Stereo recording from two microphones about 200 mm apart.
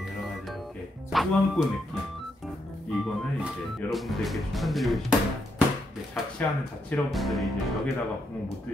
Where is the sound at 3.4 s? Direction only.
Centre (ahead or behind).